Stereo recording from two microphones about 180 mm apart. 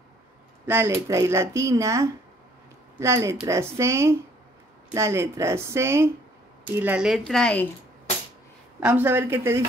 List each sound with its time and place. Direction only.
0.7 s speech: 15° right (ahead or behind); by 7.6 s 5° left (ahead or behind)
8.7 s speech: 10° right (ahead or behind)